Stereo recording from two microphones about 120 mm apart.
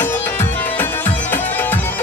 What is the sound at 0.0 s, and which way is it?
Music, 15° left (ahead or behind).